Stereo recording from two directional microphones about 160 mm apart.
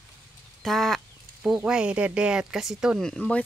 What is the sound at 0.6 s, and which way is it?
Speech, centre (ahead or behind).